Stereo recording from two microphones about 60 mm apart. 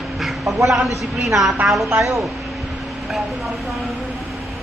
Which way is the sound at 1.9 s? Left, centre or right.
Centre.